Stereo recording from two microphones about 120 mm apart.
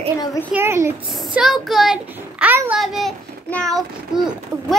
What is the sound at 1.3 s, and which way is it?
Speech, centre (ahead or behind).